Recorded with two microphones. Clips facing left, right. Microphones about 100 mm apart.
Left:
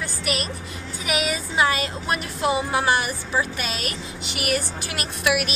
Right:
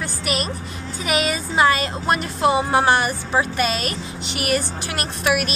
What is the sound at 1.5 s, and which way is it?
Speech, 40° right (ahead or behind).